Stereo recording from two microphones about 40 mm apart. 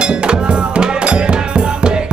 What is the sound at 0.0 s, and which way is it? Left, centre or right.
Music, right.